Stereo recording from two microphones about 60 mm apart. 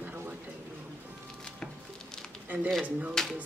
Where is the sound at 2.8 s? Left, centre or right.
Right.